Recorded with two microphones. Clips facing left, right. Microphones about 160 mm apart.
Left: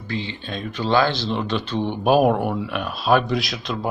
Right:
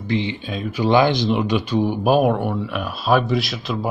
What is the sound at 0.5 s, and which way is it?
Speech, 5° right (ahead or behind).